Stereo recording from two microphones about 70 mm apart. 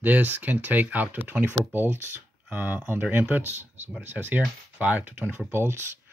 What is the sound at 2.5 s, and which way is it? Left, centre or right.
Speech, right.